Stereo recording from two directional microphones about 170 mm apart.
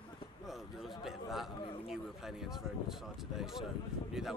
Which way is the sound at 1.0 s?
Centre (ahead or behind).